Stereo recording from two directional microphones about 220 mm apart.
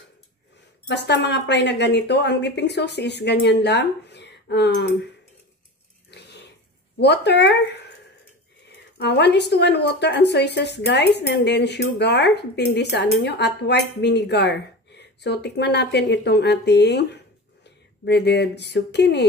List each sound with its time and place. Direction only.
0.8 s speech: 50° left (ahead or behind)
6.0 s a sound: 50° left (ahead or behind)
7.0 s speech: 50° left (ahead or behind)